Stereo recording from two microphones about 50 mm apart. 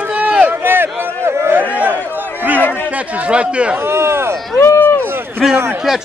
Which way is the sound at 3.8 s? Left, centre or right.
Right.